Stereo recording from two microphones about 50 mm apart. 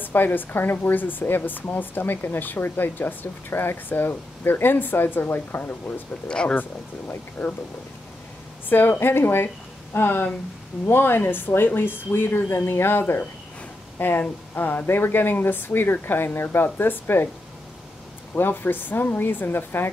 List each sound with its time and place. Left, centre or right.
0.0 s speech: left
6.2 s speech: centre
6.5 s speech: left
8.6 s a woman's voice: left
18.3 s a woman's voice: left